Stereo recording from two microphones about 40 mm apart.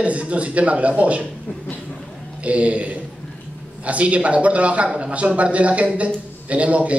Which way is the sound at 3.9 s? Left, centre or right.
Right.